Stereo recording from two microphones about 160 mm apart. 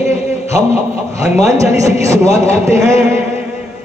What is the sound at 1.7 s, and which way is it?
A man's voice, 20° right (ahead or behind).